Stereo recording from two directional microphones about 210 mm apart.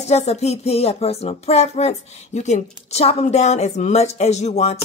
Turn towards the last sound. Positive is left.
turn(degrees=30)  # may be behind; listen again after turning